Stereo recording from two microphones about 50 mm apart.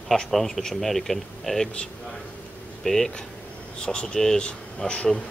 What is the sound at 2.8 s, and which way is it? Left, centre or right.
Speech, centre.